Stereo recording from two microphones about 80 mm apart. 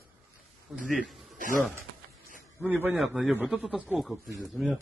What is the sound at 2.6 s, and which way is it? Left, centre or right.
Speech, right.